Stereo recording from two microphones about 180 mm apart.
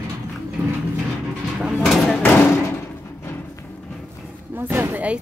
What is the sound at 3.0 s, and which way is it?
Music, 10° left (ahead or behind).